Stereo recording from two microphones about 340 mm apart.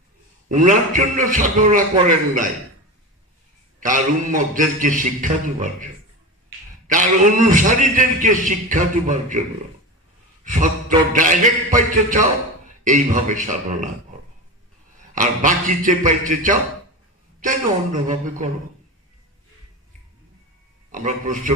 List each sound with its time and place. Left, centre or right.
0.5 s a man's voice: right
3.8 s a man's voice: right
6.9 s a man's voice: right
10.4 s a man's voice: right
15.1 s a man's voice: right
18.0 s a man's voice: right
20.9 s a man's voice: right